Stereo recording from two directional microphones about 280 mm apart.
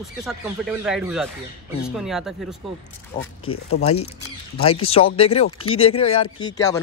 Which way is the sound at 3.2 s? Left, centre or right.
Left.